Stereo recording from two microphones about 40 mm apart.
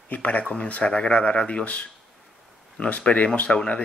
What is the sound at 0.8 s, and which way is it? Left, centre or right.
Speech, left.